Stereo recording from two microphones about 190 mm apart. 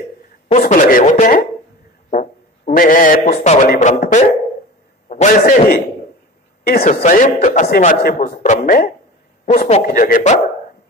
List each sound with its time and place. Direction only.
0.5 s a man's voice: 40° left (ahead or behind)